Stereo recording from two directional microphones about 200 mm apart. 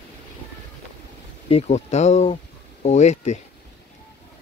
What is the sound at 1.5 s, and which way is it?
Speech, 30° left (ahead or behind).